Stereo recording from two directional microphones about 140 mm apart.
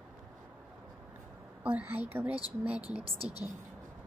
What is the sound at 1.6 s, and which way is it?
Speech, 10° right (ahead or behind).